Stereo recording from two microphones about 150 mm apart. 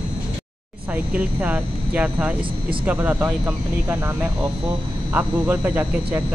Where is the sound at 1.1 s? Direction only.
10° right (ahead or behind).